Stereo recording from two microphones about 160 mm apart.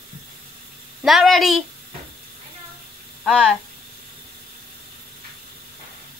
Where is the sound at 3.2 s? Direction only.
Centre (ahead or behind).